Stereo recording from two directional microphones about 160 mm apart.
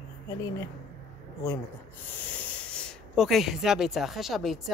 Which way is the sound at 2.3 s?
10° left (ahead or behind).